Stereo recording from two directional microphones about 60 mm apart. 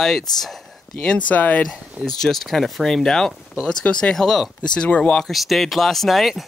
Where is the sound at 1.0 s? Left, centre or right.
Left.